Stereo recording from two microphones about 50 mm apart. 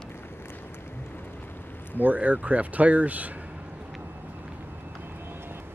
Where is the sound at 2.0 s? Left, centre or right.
Right.